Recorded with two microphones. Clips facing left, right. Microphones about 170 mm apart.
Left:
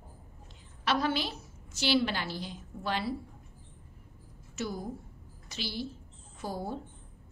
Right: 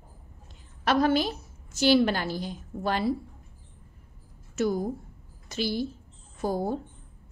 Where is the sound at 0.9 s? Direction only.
45° right (ahead or behind).